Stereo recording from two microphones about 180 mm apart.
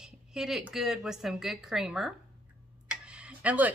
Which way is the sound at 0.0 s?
5° right (ahead or behind).